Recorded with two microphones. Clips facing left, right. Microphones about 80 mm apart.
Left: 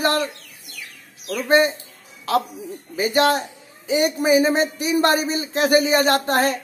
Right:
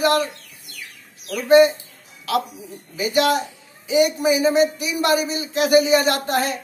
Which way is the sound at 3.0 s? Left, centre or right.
Left.